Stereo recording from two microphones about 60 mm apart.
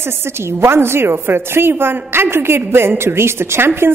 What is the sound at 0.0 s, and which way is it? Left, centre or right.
A woman's voice, right.